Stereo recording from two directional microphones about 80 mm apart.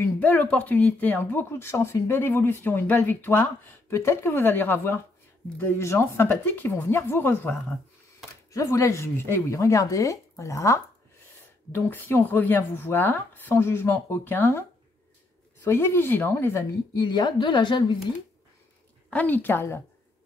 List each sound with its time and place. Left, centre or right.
0.0 s speech: left
8.5 s speech: left
11.7 s speech: left
17.0 s a woman's voice: left
19.0 s speech: centre